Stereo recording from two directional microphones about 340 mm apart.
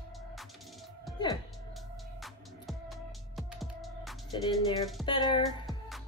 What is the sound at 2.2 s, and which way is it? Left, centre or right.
Music, centre.